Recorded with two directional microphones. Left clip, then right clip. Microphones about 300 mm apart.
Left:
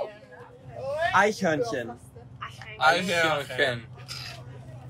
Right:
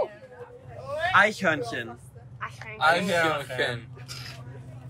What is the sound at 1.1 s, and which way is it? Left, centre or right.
Speech, centre.